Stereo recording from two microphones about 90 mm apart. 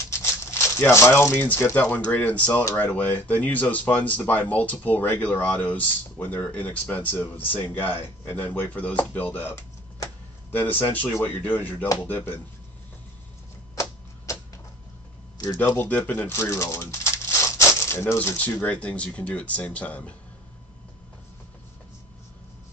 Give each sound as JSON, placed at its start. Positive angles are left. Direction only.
{"t": 0.1, "sound": "rattle", "side_deg": 30}
{"t": 2.0, "sound": "speech", "side_deg": 15}
{"t": 10.0, "sound": "a sound", "side_deg": 20}
{"t": 11.1, "sound": "speech", "side_deg": 20}
{"t": 15.5, "sound": "speech", "side_deg": 20}